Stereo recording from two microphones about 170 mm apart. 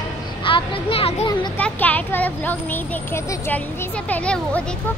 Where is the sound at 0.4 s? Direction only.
30° left (ahead or behind).